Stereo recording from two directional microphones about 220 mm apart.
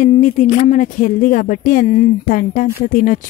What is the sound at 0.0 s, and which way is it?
Speech, 35° left (ahead or behind).